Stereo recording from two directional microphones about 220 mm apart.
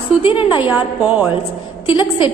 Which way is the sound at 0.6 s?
5° right (ahead or behind).